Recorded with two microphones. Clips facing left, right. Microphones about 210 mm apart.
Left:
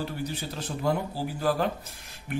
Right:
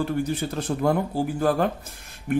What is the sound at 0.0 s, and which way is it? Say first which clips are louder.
A man's voice: right 8 dB; 55° right (ahead or behind).